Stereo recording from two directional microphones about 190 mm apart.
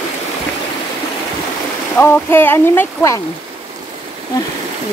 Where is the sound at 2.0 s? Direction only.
10° left (ahead or behind).